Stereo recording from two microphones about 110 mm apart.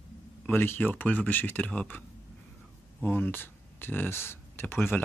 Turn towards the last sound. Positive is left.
turn(degrees=20)  # may be behind; listen again after turning